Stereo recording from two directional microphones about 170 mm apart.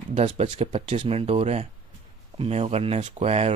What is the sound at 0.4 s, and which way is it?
Speech, 35° right (ahead or behind).